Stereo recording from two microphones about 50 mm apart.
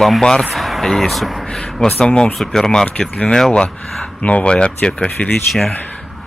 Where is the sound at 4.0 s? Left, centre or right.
Left.